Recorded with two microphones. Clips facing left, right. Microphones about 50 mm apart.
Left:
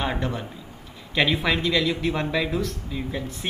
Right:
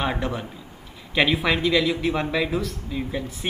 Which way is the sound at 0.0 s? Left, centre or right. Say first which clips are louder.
Right 1 dB; centre.